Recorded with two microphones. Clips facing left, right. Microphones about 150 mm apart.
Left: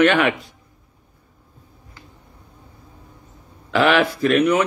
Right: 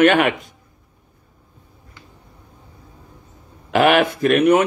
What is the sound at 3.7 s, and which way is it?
Speech, 45° right (ahead or behind).